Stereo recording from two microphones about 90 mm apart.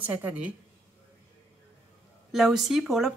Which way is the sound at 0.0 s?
20° right (ahead or behind).